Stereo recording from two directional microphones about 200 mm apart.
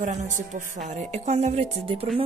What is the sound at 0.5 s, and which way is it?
Speech, 35° right (ahead or behind).